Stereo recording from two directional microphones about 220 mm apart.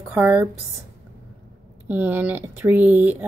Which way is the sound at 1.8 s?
10° right (ahead or behind).